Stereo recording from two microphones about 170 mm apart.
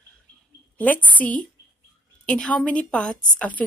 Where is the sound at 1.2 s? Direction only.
10° left (ahead or behind).